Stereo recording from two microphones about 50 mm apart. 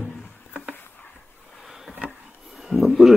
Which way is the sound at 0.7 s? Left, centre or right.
Left.